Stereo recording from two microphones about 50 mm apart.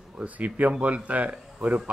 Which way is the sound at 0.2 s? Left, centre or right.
Right.